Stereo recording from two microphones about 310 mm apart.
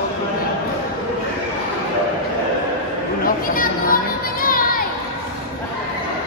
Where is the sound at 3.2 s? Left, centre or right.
Left.